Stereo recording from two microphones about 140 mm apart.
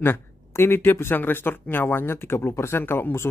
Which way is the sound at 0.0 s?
15° left (ahead or behind).